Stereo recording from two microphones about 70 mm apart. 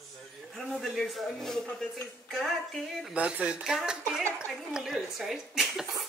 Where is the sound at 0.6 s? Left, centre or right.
Centre.